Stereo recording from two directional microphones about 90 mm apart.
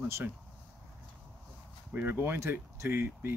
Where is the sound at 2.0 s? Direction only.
20° right (ahead or behind).